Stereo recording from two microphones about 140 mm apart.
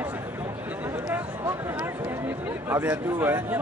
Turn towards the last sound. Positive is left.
turn(degrees=-15)  # may be behind; listen again after turning